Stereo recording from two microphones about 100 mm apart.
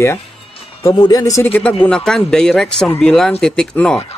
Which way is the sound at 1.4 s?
15° left (ahead or behind).